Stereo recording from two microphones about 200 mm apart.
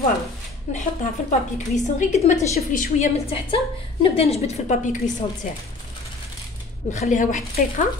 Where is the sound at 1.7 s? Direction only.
35° left (ahead or behind).